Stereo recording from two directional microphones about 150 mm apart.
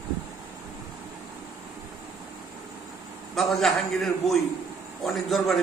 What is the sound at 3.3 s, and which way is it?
A man's voice, centre (ahead or behind).